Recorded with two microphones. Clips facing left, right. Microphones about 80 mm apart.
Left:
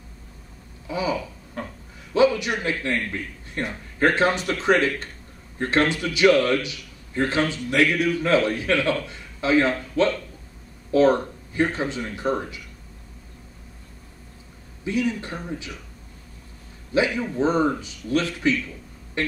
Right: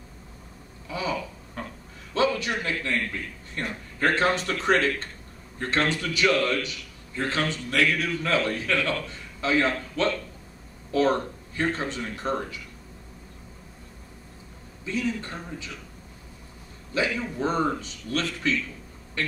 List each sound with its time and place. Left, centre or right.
0.8 s a sound: centre
2.1 s a man's voice: centre
14.9 s a man's voice: centre
16.9 s a man's voice: centre